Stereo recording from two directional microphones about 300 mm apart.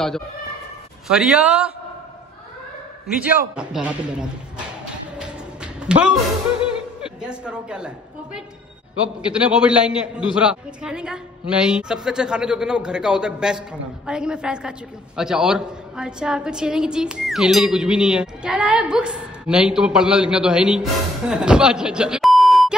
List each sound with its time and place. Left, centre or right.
1.0 s a woman's voice: centre
3.1 s a woman's voice: centre
5.2 s a sound: centre
7.0 s a man's voice: centre